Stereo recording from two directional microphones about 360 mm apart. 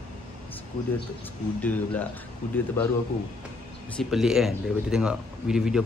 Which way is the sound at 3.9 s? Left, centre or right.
Centre.